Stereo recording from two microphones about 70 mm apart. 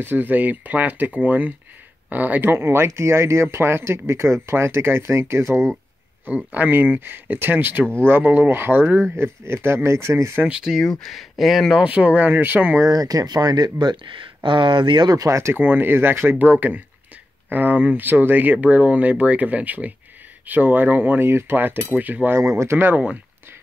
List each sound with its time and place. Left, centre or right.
0.0 s speech: right
6.2 s speech: right
7.8 s speech: centre
8.1 s speech: right
10.4 s speech: centre
10.7 s speech: centre
11.8 s speech: centre
12.8 s speech: right
15.0 s speech: right
15.5 s speech: right
22.4 s speech: right